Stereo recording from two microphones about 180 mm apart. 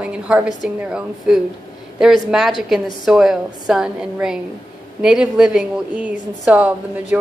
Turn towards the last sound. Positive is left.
turn(degrees=-10)  # may be behind; listen again after turning